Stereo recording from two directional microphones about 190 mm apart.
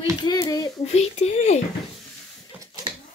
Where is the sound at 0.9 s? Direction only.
35° left (ahead or behind).